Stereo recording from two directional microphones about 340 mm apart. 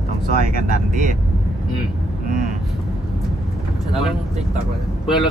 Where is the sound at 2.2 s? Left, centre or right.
Right.